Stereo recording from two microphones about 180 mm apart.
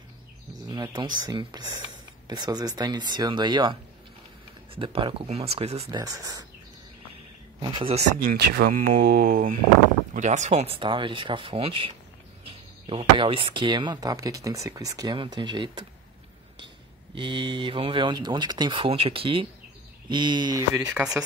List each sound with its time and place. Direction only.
0.7 s speech: 20° right (ahead or behind)
4.7 s speech: 30° right (ahead or behind)
5.9 s speech: 20° right (ahead or behind)
7.7 s speech: 30° right (ahead or behind)
8.3 s speech: 60° right (ahead or behind)
10.1 s speech: 40° right (ahead or behind); by 15.9 s 25° right (ahead or behind)
17.1 s speech: 30° right (ahead or behind)
20.7 s speech: 5° right (ahead or behind)